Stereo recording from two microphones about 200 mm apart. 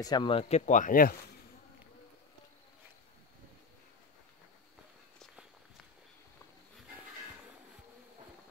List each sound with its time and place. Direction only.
0.0 s speech: 20° left (ahead or behind); by 1.1 s 45° left (ahead or behind)